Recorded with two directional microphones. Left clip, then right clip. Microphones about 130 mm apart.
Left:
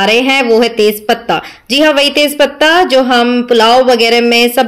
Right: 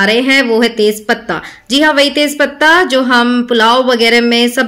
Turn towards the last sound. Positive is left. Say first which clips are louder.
# left 2 dB
turn(degrees=10)  # may be behind; listen again after turning